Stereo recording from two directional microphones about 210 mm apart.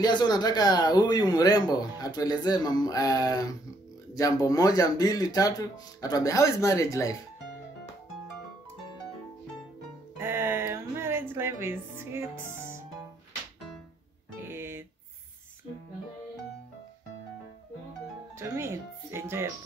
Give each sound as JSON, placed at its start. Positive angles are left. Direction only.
{"t": 0.0, "sound": "speech", "side_deg": 20}
{"t": 10.1, "sound": "music", "side_deg": -10}
{"t": 14.4, "sound": "music", "side_deg": -10}
{"t": 18.4, "sound": "speech", "side_deg": -15}